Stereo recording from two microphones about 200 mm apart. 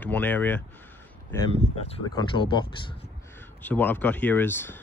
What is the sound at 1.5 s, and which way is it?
Speech, 30° left (ahead or behind).